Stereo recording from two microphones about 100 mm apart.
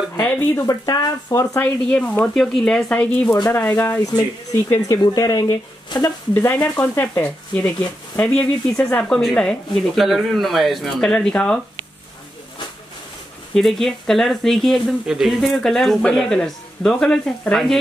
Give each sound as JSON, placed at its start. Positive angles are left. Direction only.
{"t": 0.1, "sound": "speech", "side_deg": 20}
{"t": 0.7, "sound": "speech", "side_deg": 40}
{"t": 1.9, "sound": "speech", "side_deg": 15}
{"t": 2.9, "sound": "speech", "side_deg": 15}
{"t": 4.6, "sound": "speech", "side_deg": 30}
{"t": 6.3, "sound": "speech", "side_deg": 15}
{"t": 13.6, "sound": "speech", "side_deg": 0}